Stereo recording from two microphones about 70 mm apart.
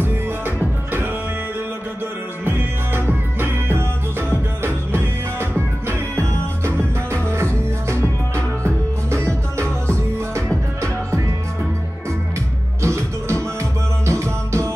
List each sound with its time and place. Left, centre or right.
2.4 s music: right
5.9 s music: right
9.6 s music: right
12.8 s music: right